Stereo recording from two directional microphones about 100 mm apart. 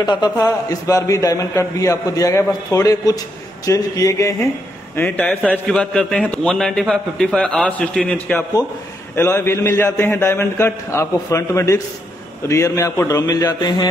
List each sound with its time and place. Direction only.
0.0 s a man's voice: 45° left (ahead or behind)
4.9 s a man's voice: 20° left (ahead or behind)
5.7 s a man's voice: 5° left (ahead or behind)
9.1 s a man's voice: 25° left (ahead or behind); by 13.8 s 45° left (ahead or behind)